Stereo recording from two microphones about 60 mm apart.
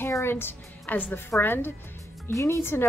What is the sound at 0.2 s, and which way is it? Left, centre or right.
A woman's voice, left.